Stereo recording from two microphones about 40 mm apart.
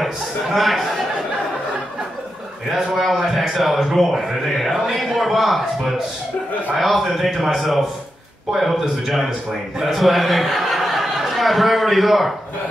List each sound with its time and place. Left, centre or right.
0.0 s a man's voice: centre
3.2 s a man's voice: centre